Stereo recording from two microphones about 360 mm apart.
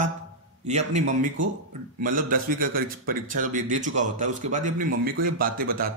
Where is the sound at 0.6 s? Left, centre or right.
Centre.